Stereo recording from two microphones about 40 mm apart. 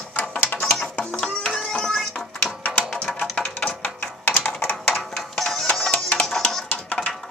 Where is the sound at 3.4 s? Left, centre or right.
Centre.